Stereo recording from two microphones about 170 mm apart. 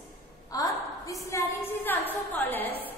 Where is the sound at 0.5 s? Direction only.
20° left (ahead or behind).